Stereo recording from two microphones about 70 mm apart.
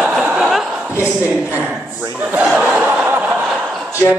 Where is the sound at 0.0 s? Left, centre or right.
Centre.